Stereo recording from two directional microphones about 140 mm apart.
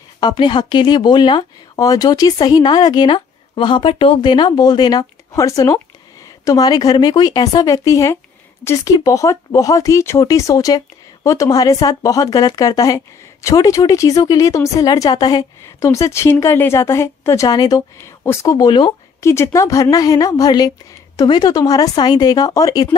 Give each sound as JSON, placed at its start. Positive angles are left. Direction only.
{"t": 0.2, "sound": "speech", "side_deg": 30}
{"t": 19.2, "sound": "speech", "side_deg": 20}